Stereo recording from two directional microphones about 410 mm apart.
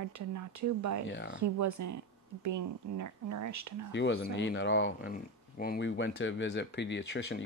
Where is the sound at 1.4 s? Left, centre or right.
Right.